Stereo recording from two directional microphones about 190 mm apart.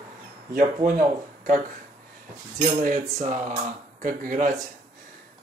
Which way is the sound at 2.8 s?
45° right (ahead or behind).